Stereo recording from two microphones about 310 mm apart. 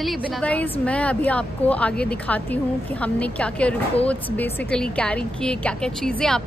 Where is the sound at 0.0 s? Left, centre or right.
Centre.